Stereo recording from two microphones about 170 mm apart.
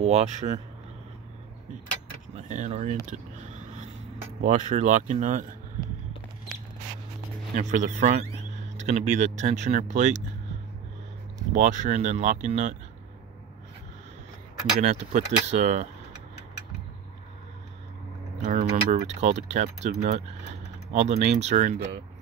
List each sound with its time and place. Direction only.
0.0 s speech: 40° right (ahead or behind)
2.3 s speech: 45° right (ahead or behind)
3.1 s a sound: 45° right (ahead or behind)
4.4 s speech: 45° right (ahead or behind)
7.5 s speech: 45° right (ahead or behind)
11.5 s speech: 45° right (ahead or behind)
14.8 s speech: 40° right (ahead or behind)
18.4 s speech: 45° right (ahead or behind)